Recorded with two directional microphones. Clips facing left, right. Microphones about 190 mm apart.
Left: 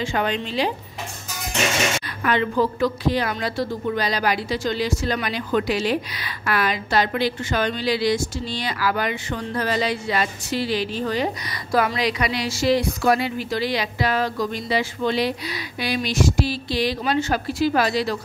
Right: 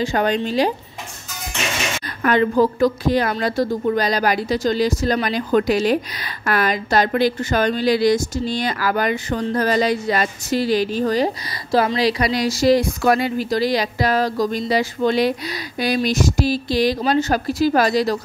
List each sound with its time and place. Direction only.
0.0 s a woman's voice: 40° right (ahead or behind)
2.2 s a woman's voice: 45° right (ahead or behind)
11.7 s a woman's voice: 30° right (ahead or behind)